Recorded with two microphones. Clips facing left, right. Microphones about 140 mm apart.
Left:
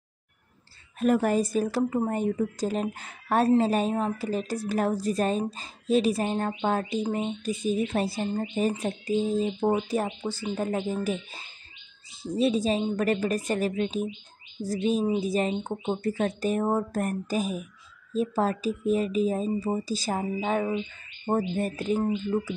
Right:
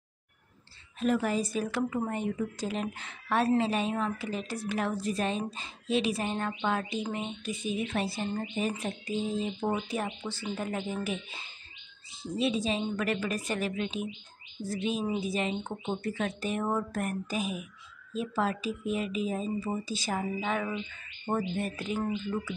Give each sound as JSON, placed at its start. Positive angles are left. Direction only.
{"t": 0.9, "sound": "speech", "side_deg": 50}
{"t": 12.4, "sound": "speech", "side_deg": 40}